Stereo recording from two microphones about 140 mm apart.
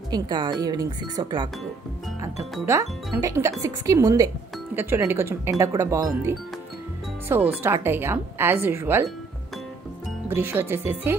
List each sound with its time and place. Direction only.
0.1 s speech: 30° right (ahead or behind)
2.7 s speech: 20° right (ahead or behind)
10.3 s speech: 15° right (ahead or behind)